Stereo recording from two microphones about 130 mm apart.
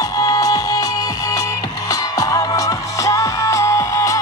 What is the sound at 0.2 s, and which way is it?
Music, 30° left (ahead or behind).